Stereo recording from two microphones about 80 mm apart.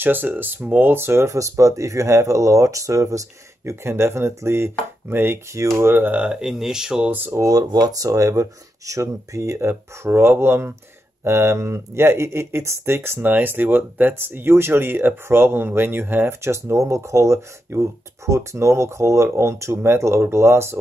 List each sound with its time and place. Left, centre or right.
0.0 s speech: right
6.1 s speech: centre
7.3 s speech: right